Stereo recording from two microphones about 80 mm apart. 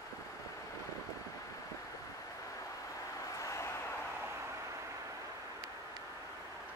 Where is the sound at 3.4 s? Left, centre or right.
Left.